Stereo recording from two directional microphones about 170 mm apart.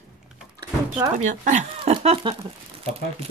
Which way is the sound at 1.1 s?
45° right (ahead or behind).